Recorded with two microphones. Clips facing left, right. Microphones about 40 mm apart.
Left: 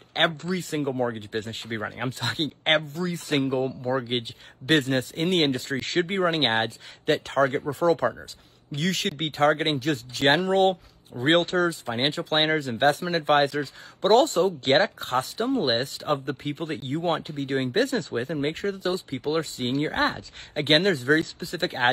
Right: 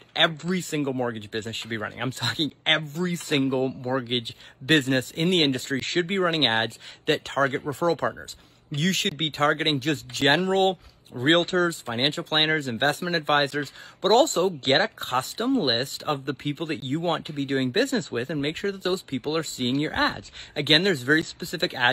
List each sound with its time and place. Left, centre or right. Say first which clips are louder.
0.1 s speech: right 1 dB; right
2.8 s speech: right 1 dB; right